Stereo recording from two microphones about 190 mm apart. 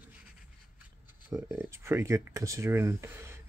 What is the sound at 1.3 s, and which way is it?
Speech, 15° right (ahead or behind).